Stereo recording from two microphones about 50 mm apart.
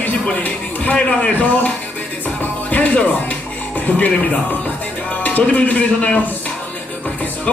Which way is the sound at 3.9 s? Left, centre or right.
Left.